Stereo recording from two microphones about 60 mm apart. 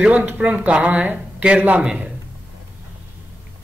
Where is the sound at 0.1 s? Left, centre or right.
Right.